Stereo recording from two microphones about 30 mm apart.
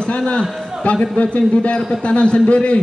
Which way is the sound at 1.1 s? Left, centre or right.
Left.